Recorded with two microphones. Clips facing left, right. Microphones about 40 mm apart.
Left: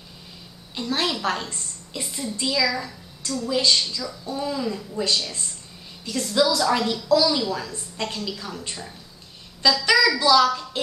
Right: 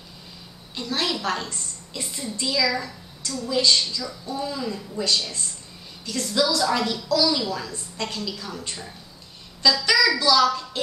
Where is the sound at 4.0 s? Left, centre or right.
Centre.